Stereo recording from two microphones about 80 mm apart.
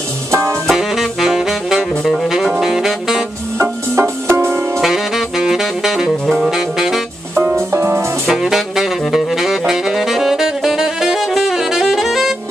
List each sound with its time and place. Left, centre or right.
0.3 s music: right
0.7 s saxophone: centre
3.9 s music: right
4.8 s saxophone: centre
7.5 s music: right
8.3 s saxophone: centre